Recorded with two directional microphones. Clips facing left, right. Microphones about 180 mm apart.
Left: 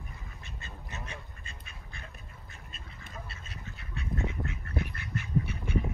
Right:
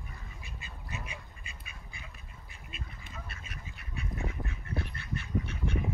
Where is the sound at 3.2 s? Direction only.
30° left (ahead or behind).